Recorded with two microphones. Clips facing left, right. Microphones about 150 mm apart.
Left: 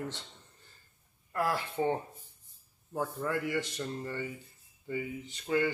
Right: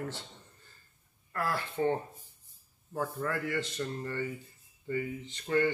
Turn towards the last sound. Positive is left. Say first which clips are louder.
# right 1 dB
turn(degrees=10)  # may be behind; listen again after turning